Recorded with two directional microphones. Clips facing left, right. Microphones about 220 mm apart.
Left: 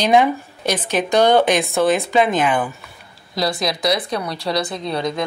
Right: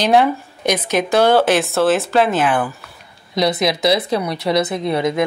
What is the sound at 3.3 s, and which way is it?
Speech, 20° right (ahead or behind).